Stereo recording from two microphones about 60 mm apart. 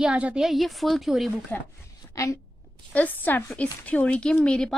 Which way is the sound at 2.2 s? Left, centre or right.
Left.